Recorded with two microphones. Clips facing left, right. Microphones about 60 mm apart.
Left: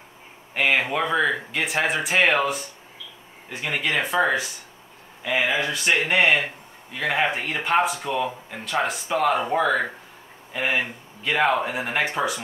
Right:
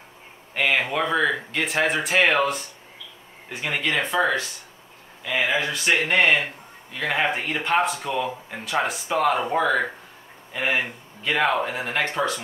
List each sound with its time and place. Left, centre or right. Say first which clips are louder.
0.6 s speech: left 1 dB; centre